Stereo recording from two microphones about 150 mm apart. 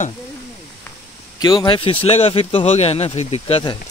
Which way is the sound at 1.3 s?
25° left (ahead or behind).